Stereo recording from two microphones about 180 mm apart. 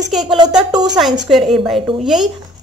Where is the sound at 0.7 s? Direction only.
20° right (ahead or behind).